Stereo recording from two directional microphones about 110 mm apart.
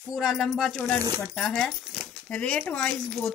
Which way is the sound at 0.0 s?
5° right (ahead or behind).